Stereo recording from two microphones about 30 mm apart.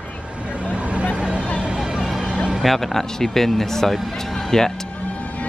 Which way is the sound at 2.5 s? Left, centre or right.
Centre.